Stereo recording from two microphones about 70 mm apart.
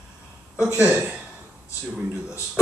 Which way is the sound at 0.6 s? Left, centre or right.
Right.